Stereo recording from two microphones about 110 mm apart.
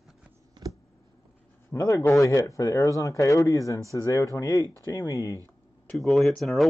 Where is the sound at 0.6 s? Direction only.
40° right (ahead or behind).